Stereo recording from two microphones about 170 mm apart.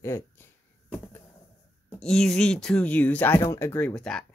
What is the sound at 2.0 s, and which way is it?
Speech, 5° left (ahead or behind).